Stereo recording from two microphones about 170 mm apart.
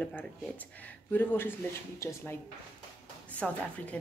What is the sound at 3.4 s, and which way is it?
Speech, 10° left (ahead or behind).